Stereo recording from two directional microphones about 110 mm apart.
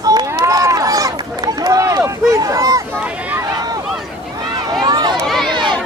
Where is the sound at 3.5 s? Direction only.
35° right (ahead or behind).